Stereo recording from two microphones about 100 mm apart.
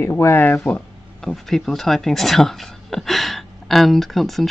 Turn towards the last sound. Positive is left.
turn(degrees=0)  # may be behind; listen again after turning